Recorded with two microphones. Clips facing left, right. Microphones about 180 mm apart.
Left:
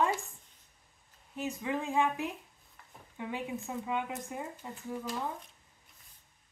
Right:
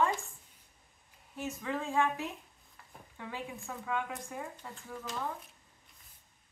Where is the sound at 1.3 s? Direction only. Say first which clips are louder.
Left 2 dB; 15° left (ahead or behind).